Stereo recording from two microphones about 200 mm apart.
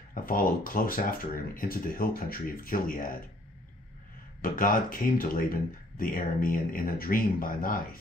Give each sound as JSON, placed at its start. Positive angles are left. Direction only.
{"t": 0.1, "sound": "speech", "side_deg": 45}
{"t": 4.4, "sound": "speech", "side_deg": 45}